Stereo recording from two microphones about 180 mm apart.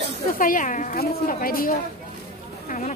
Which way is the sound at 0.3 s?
50° left (ahead or behind).